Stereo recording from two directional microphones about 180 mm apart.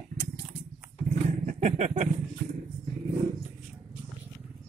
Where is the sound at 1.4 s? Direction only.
40° right (ahead or behind).